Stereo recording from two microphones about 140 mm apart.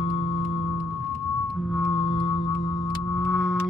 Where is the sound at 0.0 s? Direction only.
35° left (ahead or behind).